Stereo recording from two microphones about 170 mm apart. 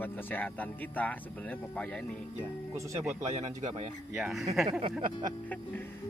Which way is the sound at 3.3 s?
45° right (ahead or behind).